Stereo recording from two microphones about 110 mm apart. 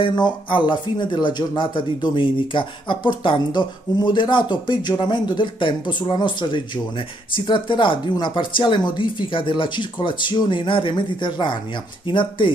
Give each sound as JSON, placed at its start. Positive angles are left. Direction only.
{"t": 0.0, "sound": "speech", "side_deg": 45}